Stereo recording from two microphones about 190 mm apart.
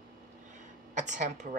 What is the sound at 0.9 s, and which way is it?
Speech, 40° right (ahead or behind).